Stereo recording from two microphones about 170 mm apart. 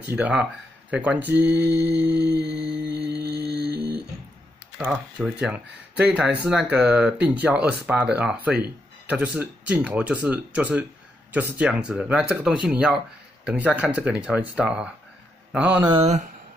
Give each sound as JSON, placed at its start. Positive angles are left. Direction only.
{"t": 0.0, "sound": "speech", "side_deg": -10}
{"t": 3.0, "sound": "music", "side_deg": -70}
{"t": 3.4, "sound": "a sound", "side_deg": -70}
{"t": 3.7, "sound": "a sound", "side_deg": 25}
{"t": 4.7, "sound": "speech", "side_deg": -5}
{"t": 15.8, "sound": "speech", "side_deg": -25}